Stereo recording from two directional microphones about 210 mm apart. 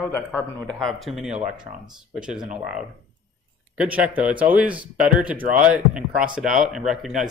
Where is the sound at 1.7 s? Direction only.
30° right (ahead or behind).